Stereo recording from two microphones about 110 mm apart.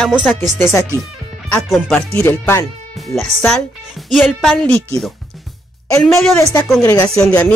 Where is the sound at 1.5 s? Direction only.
5° left (ahead or behind).